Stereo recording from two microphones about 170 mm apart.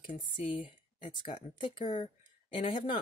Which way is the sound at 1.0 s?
30° left (ahead or behind).